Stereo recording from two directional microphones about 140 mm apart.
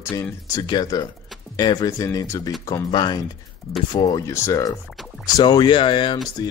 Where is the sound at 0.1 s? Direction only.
20° left (ahead or behind).